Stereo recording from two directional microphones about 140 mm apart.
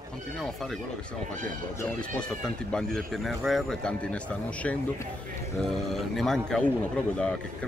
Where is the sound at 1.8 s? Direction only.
10° left (ahead or behind).